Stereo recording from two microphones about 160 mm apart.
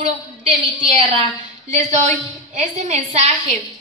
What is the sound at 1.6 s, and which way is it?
A woman's voice, 45° right (ahead or behind).